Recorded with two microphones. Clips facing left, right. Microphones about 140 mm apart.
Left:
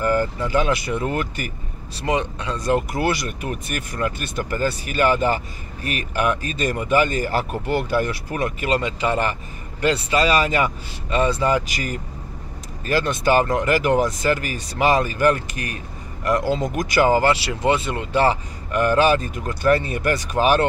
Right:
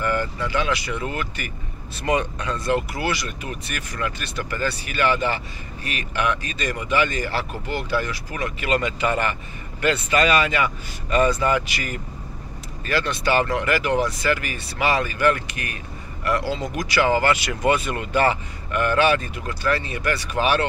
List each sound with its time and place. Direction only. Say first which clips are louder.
0.0 s speech: left 4 dB; 40° left (ahead or behind)
2.0 s speech: even; 25° left (ahead or behind)
2.6 s speech: left 4 dB; 45° left (ahead or behind)
11.1 s speech: even; 25° left (ahead or behind); by 20.6 s 40° left (ahead or behind)